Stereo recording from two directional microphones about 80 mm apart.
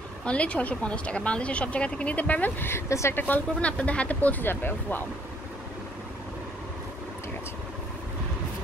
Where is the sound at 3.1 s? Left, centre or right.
Left.